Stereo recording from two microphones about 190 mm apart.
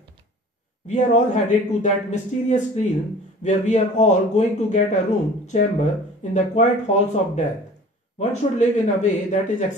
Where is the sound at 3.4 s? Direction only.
40° left (ahead or behind).